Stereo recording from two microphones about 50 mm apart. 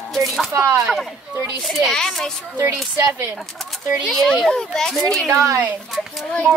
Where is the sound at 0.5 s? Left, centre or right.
Right.